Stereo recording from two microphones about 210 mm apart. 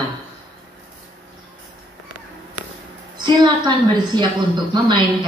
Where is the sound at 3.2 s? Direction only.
20° right (ahead or behind).